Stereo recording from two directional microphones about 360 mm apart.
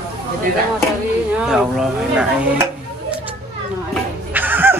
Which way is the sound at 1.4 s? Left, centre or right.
Centre.